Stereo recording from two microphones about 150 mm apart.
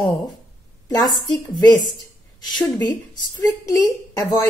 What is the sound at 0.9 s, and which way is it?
Speech, 25° left (ahead or behind).